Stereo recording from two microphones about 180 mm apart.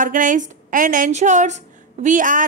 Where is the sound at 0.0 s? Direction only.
45° right (ahead or behind).